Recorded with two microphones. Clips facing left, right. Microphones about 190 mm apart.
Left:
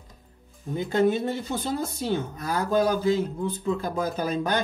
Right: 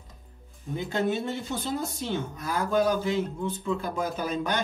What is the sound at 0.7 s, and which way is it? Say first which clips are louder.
Speech: left 5 dB; 40° left (ahead or behind).